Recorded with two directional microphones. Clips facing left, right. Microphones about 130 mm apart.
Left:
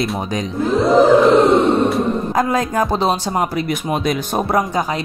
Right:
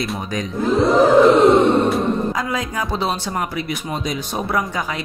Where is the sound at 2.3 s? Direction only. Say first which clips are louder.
Left 6 dB; 45° left (ahead or behind).